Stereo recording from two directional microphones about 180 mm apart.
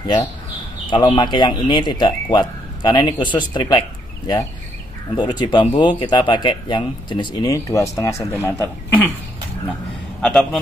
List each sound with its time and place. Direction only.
0.0 s speech: 25° left (ahead or behind)
5.1 s speech: 25° left (ahead or behind)
10.2 s speech: 5° left (ahead or behind)